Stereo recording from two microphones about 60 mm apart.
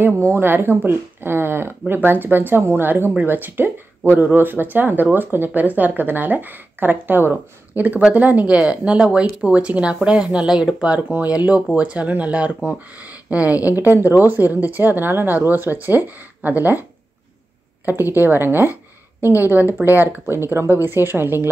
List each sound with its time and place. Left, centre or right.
0.2 s speech: right
18.1 s speech: right